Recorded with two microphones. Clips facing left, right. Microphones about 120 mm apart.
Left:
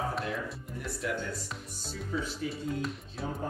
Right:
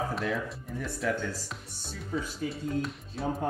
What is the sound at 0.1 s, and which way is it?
Speech, centre (ahead or behind).